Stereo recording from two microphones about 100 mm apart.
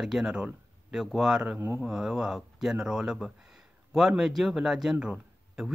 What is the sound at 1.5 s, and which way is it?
Speech, 25° right (ahead or behind).